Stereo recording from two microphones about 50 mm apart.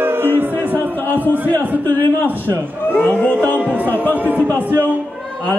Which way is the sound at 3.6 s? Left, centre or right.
Right.